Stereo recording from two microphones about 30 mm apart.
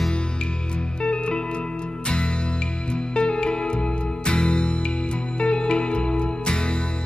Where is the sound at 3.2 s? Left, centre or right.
Left.